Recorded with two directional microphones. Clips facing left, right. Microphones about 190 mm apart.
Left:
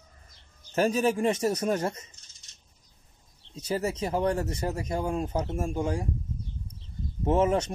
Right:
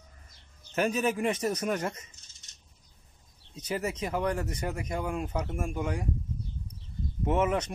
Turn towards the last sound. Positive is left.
turn(degrees=30)  # may be behind; listen again after turning